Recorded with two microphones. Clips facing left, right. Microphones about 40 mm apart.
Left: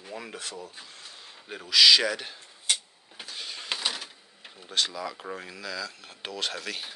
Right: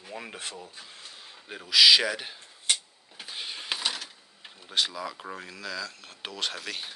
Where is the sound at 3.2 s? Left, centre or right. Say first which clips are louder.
Right 1 dB; centre.